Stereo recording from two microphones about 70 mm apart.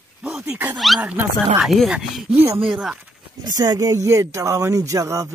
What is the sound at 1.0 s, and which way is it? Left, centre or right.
Speech, right.